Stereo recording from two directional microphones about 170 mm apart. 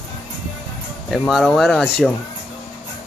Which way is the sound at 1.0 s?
Centre (ahead or behind).